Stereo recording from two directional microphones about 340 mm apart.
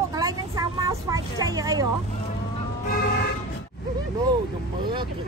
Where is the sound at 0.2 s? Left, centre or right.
Centre.